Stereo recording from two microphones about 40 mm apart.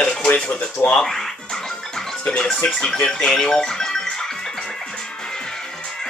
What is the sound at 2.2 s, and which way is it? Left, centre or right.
Music, left.